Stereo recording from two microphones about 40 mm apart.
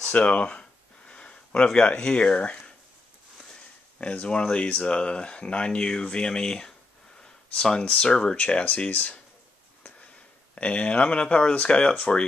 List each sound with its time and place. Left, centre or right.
0.1 s a sound: left
2.0 s speech: left
4.0 s speech: left
8.4 s speech: left
10.5 s speech: left